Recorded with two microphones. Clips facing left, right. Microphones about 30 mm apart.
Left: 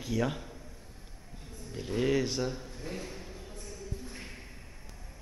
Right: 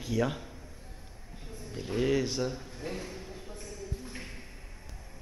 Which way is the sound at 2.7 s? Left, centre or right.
Centre.